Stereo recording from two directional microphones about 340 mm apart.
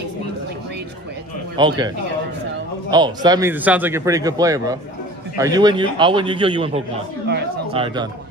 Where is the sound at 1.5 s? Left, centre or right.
Centre.